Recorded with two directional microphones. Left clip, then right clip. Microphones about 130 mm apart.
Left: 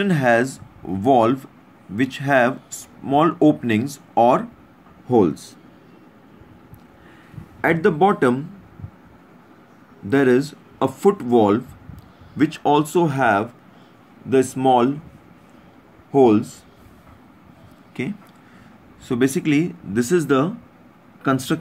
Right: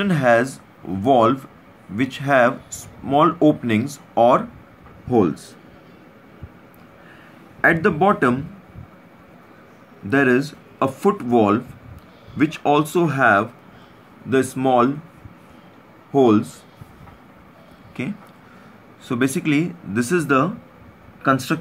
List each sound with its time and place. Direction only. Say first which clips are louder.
0.0 s speech: right 1 dB; 25° left (ahead or behind)
7.6 s speech: right 1 dB; 20° left (ahead or behind)
10.0 s speech: even; 20° left (ahead or behind)
16.1 s speech: left 1 dB; 25° left (ahead or behind)
18.0 s speech: left 1 dB; 20° left (ahead or behind)